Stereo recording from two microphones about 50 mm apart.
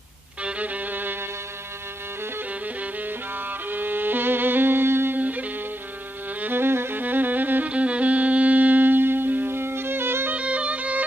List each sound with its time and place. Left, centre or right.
0.4 s music: right
2.6 s music: right
5.2 s music: right
6.4 s music: right
7.0 s music: right
7.7 s music: right
10.3 s music: right